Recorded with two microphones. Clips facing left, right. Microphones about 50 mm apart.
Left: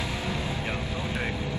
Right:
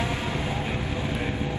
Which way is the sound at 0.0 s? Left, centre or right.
Right.